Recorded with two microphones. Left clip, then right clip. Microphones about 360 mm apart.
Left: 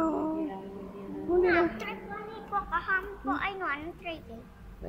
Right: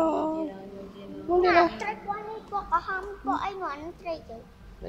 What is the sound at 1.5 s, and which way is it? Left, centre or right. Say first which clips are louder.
Speech: right 5 dB; centre.